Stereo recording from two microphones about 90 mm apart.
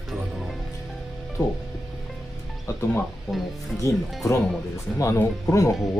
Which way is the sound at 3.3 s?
5° left (ahead or behind).